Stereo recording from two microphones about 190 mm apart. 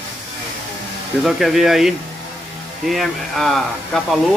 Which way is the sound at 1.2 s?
Centre (ahead or behind).